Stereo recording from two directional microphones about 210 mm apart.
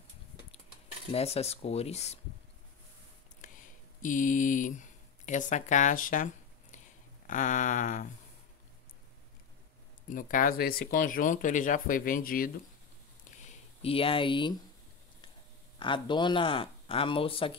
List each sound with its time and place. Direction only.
1.1 s speech: 30° left (ahead or behind)
4.0 s speech: 40° left (ahead or behind)
10.0 s speech: 40° left (ahead or behind)
13.4 s a sound: 25° left (ahead or behind)
15.8 s speech: 25° left (ahead or behind)